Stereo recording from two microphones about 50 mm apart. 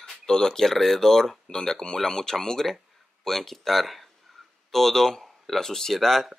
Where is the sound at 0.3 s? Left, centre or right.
Centre.